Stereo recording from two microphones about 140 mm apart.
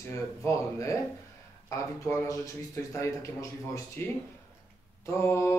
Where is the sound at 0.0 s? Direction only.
20° left (ahead or behind).